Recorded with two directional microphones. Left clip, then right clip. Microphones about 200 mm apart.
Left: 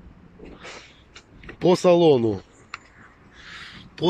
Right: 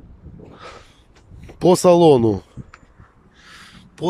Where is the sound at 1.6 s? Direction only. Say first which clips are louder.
Right 4 dB; 35° right (ahead or behind).